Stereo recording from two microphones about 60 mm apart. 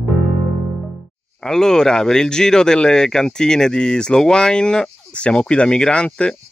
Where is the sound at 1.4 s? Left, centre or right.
Centre.